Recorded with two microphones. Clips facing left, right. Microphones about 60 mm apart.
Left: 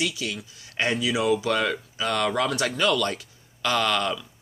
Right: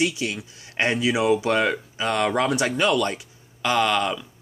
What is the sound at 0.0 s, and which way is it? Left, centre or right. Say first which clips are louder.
Speech: right 4 dB; right.